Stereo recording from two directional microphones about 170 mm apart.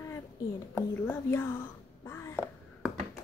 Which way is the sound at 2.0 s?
15° left (ahead or behind).